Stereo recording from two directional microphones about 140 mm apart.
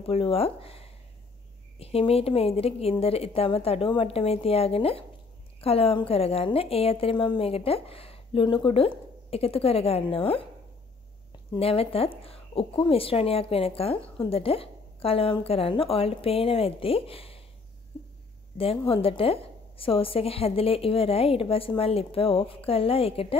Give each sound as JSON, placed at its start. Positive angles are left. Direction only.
{"t": 0.0, "sound": "a woman's voice", "side_deg": 45}
{"t": 11.5, "sound": "a woman's voice", "side_deg": 45}
{"t": 18.9, "sound": "a woman's voice", "side_deg": 40}